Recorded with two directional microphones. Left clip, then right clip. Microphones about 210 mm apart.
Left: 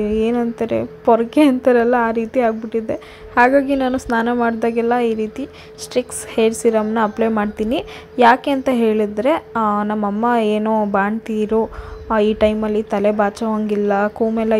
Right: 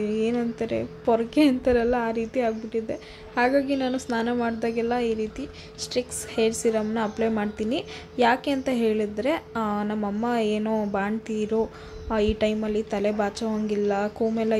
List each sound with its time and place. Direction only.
0.0 s a woman's voice: 20° left (ahead or behind)